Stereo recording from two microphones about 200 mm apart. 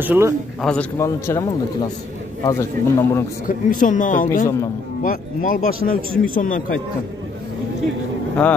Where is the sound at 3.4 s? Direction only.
40° left (ahead or behind).